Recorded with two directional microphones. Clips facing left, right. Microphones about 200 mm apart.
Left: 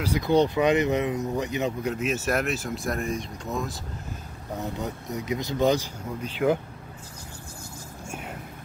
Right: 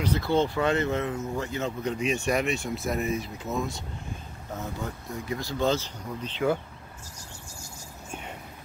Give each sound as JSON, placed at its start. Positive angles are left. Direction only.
{"t": 0.0, "sound": "speech", "side_deg": 15}
{"t": 4.6, "sound": "speech", "side_deg": 20}
{"t": 8.1, "sound": "a sound", "side_deg": 5}